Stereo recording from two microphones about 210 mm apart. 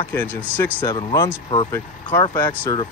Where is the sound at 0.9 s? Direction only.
20° left (ahead or behind).